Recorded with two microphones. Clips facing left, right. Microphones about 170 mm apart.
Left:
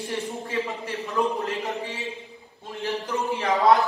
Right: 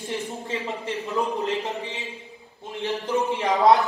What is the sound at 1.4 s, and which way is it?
Speech, 20° right (ahead or behind).